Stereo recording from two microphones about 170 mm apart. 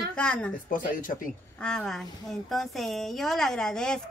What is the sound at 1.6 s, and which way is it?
A woman's voice, 5° left (ahead or behind).